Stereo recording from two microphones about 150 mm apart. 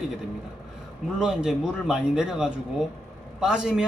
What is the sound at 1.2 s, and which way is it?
Speech, 5° right (ahead or behind).